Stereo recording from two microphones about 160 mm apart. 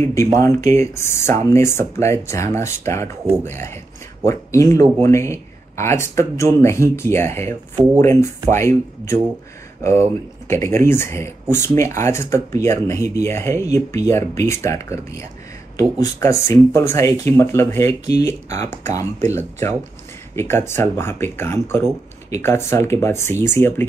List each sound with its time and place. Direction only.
0.0 s speech: 15° left (ahead or behind)
10.5 s speech: 15° left (ahead or behind)
18.6 s speech: 45° right (ahead or behind)
18.9 s speech: 15° left (ahead or behind)